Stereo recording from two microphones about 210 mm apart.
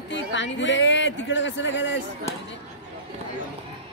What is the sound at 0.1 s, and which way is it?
Speech, 60° left (ahead or behind).